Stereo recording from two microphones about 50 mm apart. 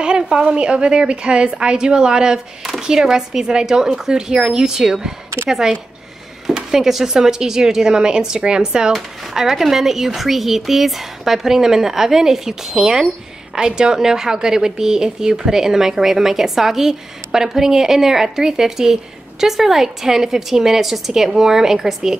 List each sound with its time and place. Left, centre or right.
0.0 s a woman's voice: centre